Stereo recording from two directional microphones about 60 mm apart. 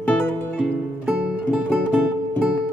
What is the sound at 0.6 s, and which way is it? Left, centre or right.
Music, centre.